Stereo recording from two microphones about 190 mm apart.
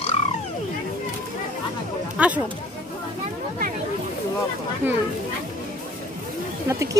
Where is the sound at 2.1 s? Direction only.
5° right (ahead or behind).